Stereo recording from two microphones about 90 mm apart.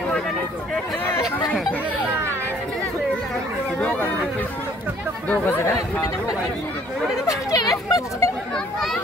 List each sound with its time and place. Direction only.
5.3 s speech: 20° left (ahead or behind)
7.2 s speech: 40° left (ahead or behind)